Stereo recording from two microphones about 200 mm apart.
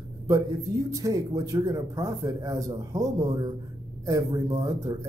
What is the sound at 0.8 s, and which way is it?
Speech, 15° right (ahead or behind).